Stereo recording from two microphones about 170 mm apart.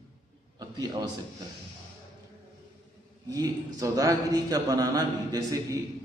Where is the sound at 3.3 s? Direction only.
20° right (ahead or behind).